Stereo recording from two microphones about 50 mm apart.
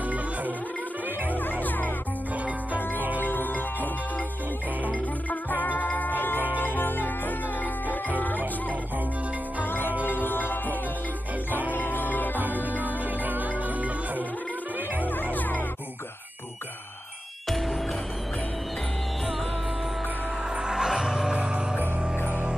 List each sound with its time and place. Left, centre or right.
1.3 s music: left
3.2 s music: left
5.3 s music: left
9.6 s music: left
12.7 s music: right
15.3 s music: left
17.5 s music: centre
20.6 s music: centre